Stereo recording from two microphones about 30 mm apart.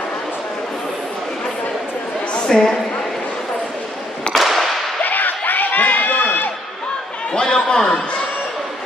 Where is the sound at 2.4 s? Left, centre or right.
Left.